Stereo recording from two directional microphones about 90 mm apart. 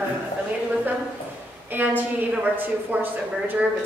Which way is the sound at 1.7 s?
20° right (ahead or behind).